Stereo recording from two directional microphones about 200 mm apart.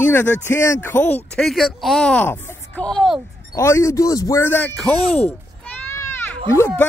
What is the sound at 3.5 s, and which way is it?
Speech, 15° left (ahead or behind).